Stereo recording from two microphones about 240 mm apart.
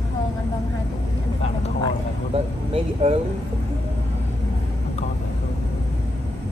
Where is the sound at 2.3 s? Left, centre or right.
Right.